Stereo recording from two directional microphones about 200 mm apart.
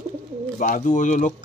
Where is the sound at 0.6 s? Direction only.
40° left (ahead or behind).